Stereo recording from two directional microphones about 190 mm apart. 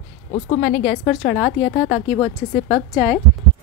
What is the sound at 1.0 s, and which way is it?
Speech, 5° left (ahead or behind).